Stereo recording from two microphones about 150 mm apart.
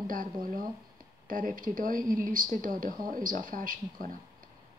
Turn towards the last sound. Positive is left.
turn(degrees=-65)  # may be behind; listen again after turning